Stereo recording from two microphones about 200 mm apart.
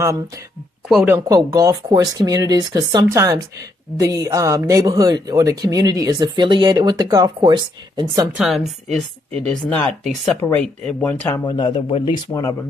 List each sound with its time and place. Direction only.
0.8 s speech: 5° right (ahead or behind); by 8.3 s 20° right (ahead or behind)
8.4 s speech: centre (ahead or behind)
11.3 s speech: 20° left (ahead or behind)